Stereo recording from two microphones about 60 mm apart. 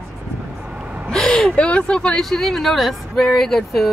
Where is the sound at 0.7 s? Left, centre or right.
Centre.